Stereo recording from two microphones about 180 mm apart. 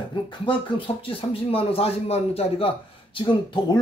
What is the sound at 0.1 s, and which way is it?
Speech, 25° left (ahead or behind).